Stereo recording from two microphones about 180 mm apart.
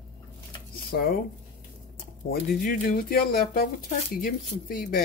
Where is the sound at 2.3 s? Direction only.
50° left (ahead or behind).